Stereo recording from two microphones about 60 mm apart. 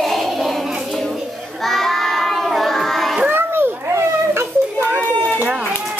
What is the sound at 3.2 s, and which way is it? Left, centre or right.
Children playing, right.